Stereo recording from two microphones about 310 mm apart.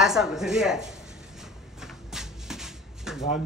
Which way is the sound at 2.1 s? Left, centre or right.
Centre.